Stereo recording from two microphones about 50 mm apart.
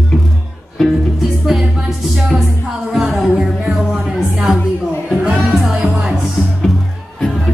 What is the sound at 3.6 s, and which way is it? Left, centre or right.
Music, centre.